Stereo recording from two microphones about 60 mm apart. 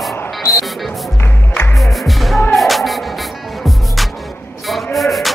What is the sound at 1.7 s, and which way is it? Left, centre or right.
Music, centre.